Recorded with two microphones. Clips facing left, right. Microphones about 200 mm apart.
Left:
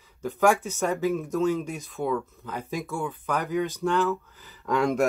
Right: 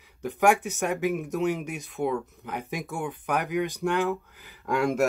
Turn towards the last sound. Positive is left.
turn(degrees=-5)  # may be behind; listen again after turning